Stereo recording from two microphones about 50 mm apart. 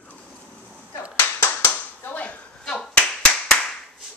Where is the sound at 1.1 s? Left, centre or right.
Left.